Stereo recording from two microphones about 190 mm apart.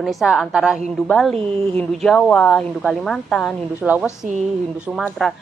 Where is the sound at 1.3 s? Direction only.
30° right (ahead or behind).